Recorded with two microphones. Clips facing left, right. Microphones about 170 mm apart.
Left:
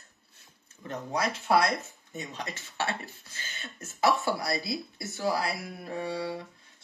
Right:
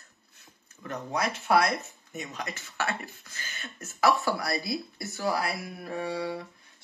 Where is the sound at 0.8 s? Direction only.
25° left (ahead or behind).